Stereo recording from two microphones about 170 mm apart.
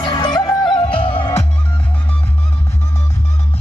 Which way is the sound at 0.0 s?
25° left (ahead or behind).